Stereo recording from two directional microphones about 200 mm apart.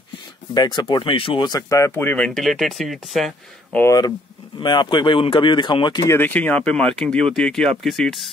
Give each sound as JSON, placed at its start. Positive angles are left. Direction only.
{"t": 0.6, "sound": "speech", "side_deg": 20}
{"t": 3.8, "sound": "speech", "side_deg": 20}
{"t": 6.1, "sound": "speech", "side_deg": 10}